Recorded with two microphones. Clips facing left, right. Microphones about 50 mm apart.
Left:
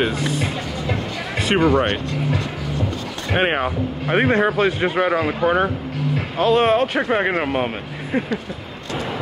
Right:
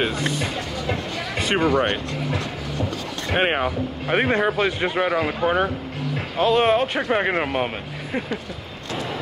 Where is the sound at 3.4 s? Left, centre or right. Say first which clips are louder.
Left 2 dB; centre.